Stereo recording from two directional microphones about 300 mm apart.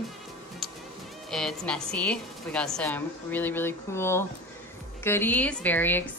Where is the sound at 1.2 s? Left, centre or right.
Centre.